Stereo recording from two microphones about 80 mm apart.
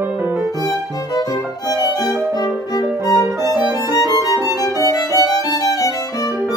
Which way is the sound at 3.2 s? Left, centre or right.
Left.